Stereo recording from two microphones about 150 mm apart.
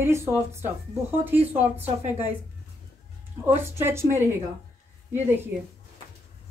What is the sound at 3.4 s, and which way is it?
Speech, 15° right (ahead or behind).